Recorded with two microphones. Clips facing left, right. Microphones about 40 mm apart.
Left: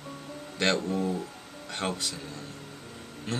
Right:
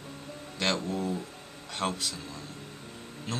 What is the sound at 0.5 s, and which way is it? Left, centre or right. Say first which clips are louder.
Speech: left 3 dB; centre.